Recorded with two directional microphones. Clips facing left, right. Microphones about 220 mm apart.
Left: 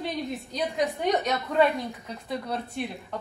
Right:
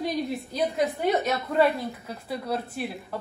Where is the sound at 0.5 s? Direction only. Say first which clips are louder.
Right 2 dB; centre (ahead or behind).